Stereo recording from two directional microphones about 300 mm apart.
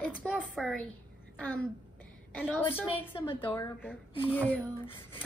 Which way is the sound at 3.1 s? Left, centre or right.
Centre.